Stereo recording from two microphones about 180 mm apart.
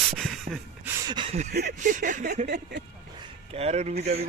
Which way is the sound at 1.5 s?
65° right (ahead or behind).